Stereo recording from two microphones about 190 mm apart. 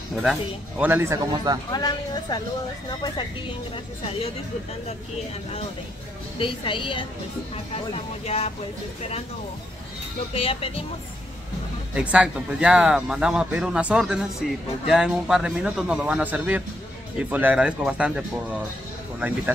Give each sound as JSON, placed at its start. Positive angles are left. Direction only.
{"t": 0.1, "sound": "speech", "side_deg": 0}
{"t": 1.7, "sound": "speech", "side_deg": 20}
{"t": 6.4, "sound": "speech", "side_deg": 25}
{"t": 10.3, "sound": "speech", "side_deg": 30}
{"t": 11.9, "sound": "speech", "side_deg": -5}